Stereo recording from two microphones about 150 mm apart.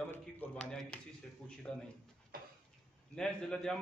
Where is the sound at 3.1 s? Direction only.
5° left (ahead or behind).